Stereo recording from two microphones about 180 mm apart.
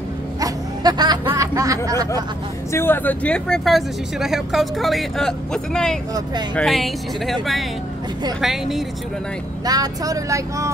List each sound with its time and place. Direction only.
0.4 s music: 20° right (ahead or behind)
2.7 s speech: 10° left (ahead or behind)
8.4 s speech: centre (ahead or behind)
9.7 s speech: 20° right (ahead or behind)